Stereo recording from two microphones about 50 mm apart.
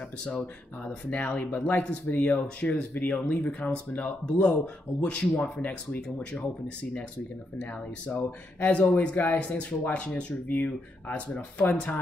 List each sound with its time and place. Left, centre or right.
0.2 s speech: left
8.1 s speech: left
8.6 s speech: left